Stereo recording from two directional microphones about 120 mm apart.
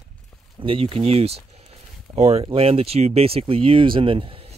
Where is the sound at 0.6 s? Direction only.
50° right (ahead or behind).